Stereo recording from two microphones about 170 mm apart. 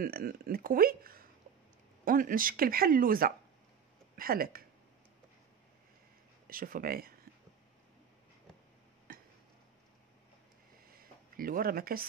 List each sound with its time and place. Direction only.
0.0 s speech: 60° right (ahead or behind)
6.4 s speech: 60° right (ahead or behind)
11.3 s speech: 55° right (ahead or behind)